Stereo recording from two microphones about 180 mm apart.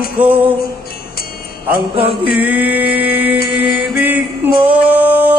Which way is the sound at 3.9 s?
10° right (ahead or behind).